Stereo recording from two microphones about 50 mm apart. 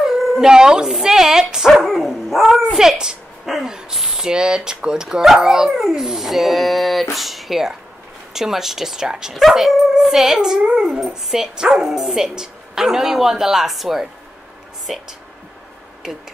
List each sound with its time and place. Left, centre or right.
0.0 s howl: centre
0.9 s speech: centre
16.0 s speech: centre